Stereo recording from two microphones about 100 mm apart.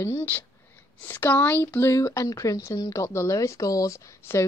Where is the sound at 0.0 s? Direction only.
25° left (ahead or behind).